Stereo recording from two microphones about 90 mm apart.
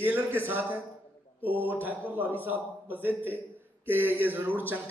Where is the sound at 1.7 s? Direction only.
20° right (ahead or behind).